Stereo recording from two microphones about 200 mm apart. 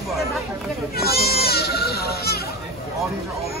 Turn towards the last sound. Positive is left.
turn(degrees=50)  # may be behind; listen again after turning